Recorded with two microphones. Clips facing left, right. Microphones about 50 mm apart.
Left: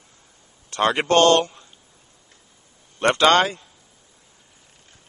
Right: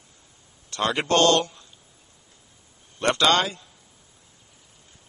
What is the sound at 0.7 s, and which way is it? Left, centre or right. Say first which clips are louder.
A man's voice: left 4 dB; left.